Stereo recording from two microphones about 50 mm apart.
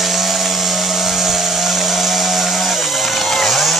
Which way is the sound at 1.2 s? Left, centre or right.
Centre.